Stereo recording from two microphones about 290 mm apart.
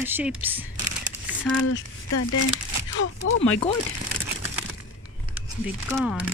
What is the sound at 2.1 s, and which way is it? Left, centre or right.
Speech, left.